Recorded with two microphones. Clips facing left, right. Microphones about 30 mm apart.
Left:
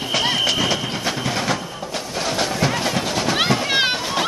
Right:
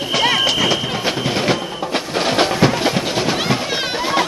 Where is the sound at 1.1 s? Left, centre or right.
Centre.